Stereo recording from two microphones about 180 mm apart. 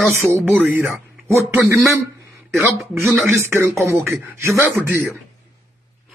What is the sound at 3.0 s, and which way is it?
Speech, 15° right (ahead or behind).